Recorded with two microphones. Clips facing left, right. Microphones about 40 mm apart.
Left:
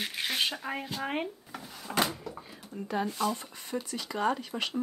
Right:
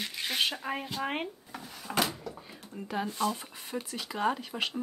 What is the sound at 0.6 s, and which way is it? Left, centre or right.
Speech, centre.